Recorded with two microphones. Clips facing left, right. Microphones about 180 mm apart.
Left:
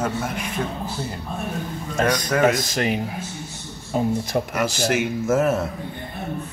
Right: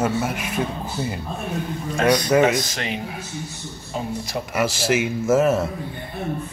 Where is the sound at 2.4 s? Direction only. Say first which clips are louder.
Left 1 dB; 40° left (ahead or behind).